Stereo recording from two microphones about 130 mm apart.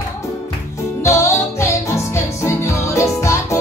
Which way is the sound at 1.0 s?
20° left (ahead or behind).